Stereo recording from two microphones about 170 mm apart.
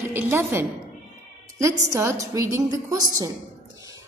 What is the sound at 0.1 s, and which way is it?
A woman's voice, 10° right (ahead or behind).